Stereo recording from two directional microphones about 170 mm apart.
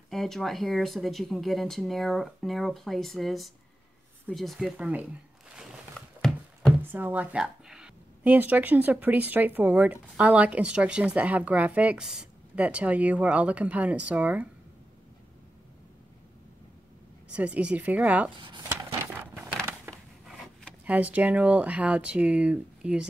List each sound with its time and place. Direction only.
0.1 s speech: centre (ahead or behind)
5.6 s a sound: centre (ahead or behind)
6.8 s a woman's voice: 10° right (ahead or behind)
17.3 s a woman's voice: 5° right (ahead or behind)
18.4 s speech: 25° right (ahead or behind)
19.3 s a sound: 10° right (ahead or behind)
20.2 s speech: centre (ahead or behind)